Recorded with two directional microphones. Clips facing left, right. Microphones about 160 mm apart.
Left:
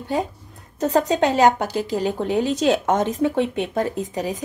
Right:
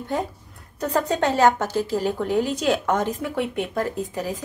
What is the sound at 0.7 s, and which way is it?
Speech, 20° left (ahead or behind).